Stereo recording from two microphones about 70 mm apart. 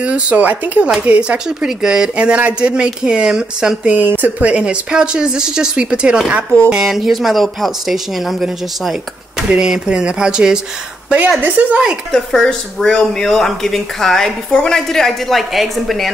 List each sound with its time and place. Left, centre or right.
0.0 s speech: centre
1.8 s speech: centre
3.9 s speech: right
11.4 s speech: right
12.1 s speech: centre